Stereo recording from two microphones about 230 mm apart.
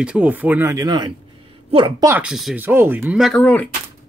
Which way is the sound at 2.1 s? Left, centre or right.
Centre.